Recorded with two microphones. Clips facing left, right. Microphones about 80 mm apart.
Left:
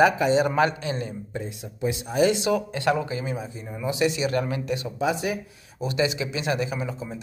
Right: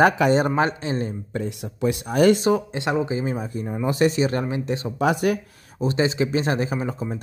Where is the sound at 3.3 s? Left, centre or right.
Right.